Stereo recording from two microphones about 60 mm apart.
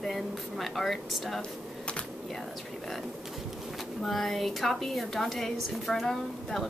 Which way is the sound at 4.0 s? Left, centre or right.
Centre.